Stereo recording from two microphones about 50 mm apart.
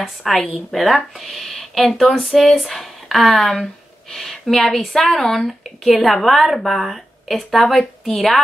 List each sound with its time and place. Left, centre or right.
0.0 s a woman's voice: centre